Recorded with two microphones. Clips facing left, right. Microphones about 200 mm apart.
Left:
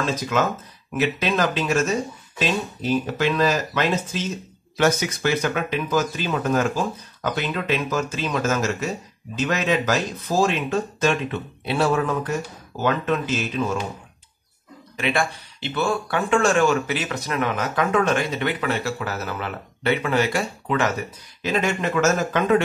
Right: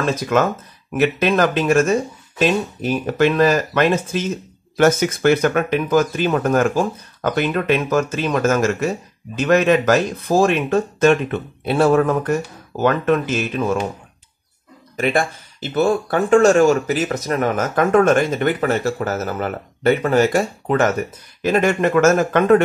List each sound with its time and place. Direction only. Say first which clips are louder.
0.0 s speech: right 5 dB; 55° right (ahead or behind)
15.0 s speech: right 4 dB; 45° right (ahead or behind)